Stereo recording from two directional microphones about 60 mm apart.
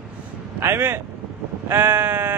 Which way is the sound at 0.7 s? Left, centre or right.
Right.